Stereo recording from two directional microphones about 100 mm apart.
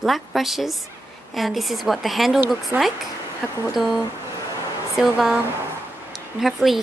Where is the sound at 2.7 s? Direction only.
25° right (ahead or behind).